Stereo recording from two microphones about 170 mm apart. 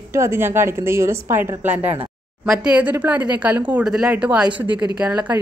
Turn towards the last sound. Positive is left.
turn(degrees=-10)  # may be behind; listen again after turning